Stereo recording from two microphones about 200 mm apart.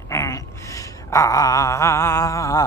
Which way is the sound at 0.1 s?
15° left (ahead or behind).